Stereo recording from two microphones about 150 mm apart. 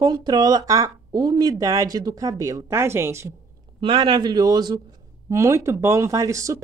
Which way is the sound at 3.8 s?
35° right (ahead or behind).